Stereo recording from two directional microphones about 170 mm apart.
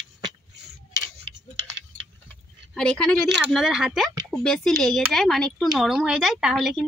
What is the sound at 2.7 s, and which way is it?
A woman's voice, 5° left (ahead or behind).